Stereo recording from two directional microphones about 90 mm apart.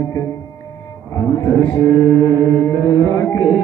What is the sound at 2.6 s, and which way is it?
Music, 30° left (ahead or behind).